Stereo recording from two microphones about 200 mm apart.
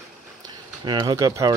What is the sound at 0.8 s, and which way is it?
Speech, 20° right (ahead or behind).